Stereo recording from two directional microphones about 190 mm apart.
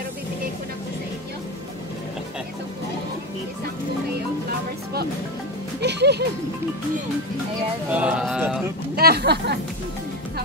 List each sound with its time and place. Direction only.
5.8 s music: 60° right (ahead or behind)
7.9 s speech: 5° right (ahead or behind)
8.9 s speech: 55° right (ahead or behind)